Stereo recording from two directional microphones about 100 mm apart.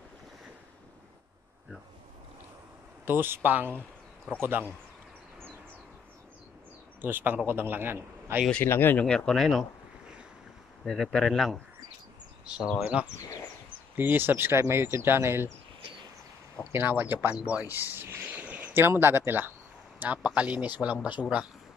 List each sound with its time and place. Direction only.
3.1 s speech: 20° right (ahead or behind)
7.0 s speech: 20° right (ahead or behind)
8.6 s speech: 20° left (ahead or behind)
9.0 s speech: 5° left (ahead or behind)
13.0 s speech: 15° right (ahead or behind)
16.7 s speech: 20° right (ahead or behind)